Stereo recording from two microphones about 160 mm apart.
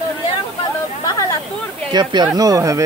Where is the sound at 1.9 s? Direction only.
25° right (ahead or behind).